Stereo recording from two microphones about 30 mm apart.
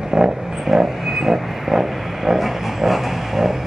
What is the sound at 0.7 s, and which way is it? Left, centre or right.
Train, centre.